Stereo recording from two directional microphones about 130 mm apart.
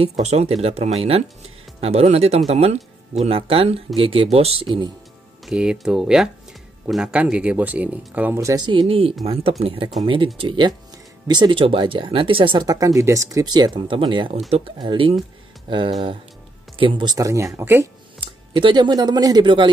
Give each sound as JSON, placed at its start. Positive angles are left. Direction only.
{"t": 0.0, "sound": "speech", "side_deg": -55}
{"t": 5.4, "sound": "speech", "side_deg": -5}
{"t": 8.4, "sound": "speech", "side_deg": -25}
{"t": 8.6, "sound": "speech", "side_deg": -40}
{"t": 16.7, "sound": "speech", "side_deg": -40}
{"t": 18.5, "sound": "speech", "side_deg": -40}